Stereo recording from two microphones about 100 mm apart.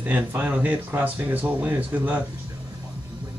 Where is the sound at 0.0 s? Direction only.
15° right (ahead or behind).